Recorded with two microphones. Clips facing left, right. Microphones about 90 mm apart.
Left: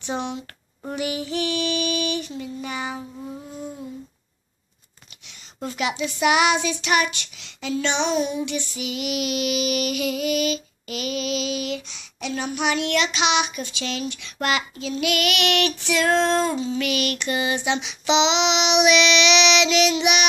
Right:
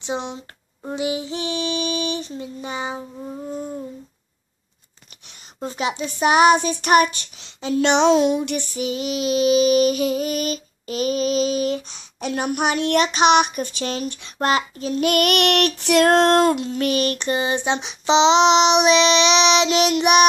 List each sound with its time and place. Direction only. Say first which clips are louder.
0.0 s female singing: right 1 dB; 25° right (ahead or behind)
5.6 s child singing: right 1 dB; 30° right (ahead or behind)
7.7 s child singing: right 7 dB; 70° right (ahead or behind)
16.8 s child singing: right 4 dB; 35° right (ahead or behind)